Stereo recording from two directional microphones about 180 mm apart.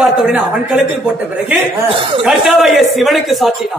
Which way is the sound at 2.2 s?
Centre (ahead or behind).